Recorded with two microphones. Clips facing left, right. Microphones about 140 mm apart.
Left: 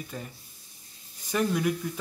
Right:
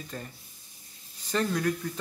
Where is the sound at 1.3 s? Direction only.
10° left (ahead or behind).